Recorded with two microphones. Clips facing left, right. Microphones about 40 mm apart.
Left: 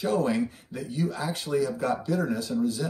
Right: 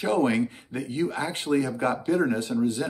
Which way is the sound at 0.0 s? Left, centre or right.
Right.